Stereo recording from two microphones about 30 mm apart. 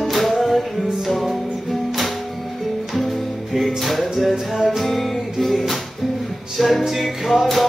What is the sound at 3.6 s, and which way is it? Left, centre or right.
Music, centre.